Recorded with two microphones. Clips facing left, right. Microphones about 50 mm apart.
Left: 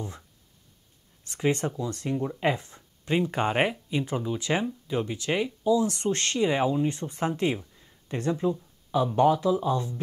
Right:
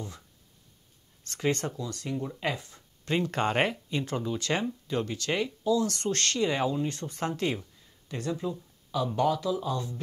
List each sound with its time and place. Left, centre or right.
1.2 s speech: centre
3.1 s speech: centre